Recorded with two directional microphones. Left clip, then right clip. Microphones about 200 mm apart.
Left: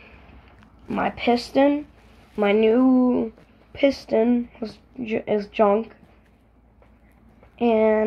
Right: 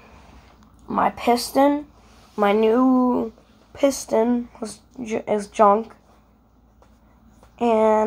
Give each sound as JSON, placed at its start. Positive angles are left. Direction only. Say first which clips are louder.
{"t": 0.8, "sound": "speech", "louder": "right 3 dB", "side_deg": 10}
{"t": 5.0, "sound": "speech", "louder": "even", "side_deg": 25}
{"t": 7.5, "sound": "a sound", "louder": "right 1 dB", "side_deg": 20}